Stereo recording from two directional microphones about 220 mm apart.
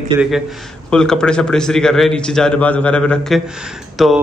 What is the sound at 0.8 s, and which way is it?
A man's voice, 5° left (ahead or behind).